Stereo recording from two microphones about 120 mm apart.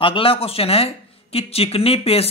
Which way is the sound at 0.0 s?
50° left (ahead or behind).